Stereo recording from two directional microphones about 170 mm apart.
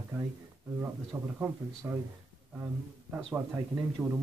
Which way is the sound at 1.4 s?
15° right (ahead or behind).